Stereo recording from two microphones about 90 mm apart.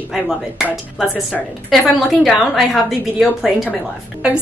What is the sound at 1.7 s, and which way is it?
A woman's voice, centre (ahead or behind).